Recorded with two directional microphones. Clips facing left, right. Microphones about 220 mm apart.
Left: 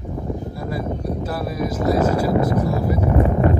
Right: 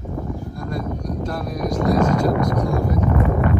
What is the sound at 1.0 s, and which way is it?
Speech, 5° left (ahead or behind).